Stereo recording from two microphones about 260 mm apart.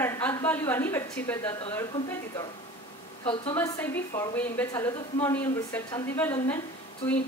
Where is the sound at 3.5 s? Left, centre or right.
Centre.